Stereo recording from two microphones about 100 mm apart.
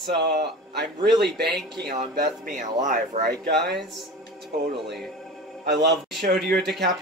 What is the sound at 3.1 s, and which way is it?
Speech, 90° right.